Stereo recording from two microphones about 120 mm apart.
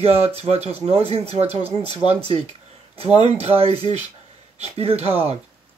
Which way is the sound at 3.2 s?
55° right (ahead or behind).